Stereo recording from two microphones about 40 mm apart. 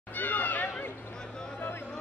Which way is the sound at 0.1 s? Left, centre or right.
Left.